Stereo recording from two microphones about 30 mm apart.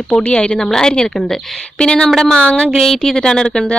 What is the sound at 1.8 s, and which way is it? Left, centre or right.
Speech, left.